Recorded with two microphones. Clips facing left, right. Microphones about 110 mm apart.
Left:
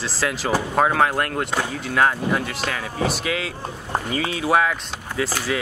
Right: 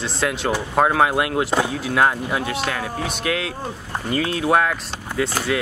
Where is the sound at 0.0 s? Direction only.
Centre (ahead or behind).